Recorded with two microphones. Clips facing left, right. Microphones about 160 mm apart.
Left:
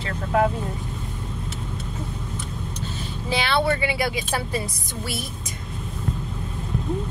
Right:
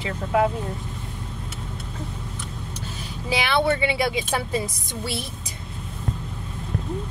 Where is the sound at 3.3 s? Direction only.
15° right (ahead or behind).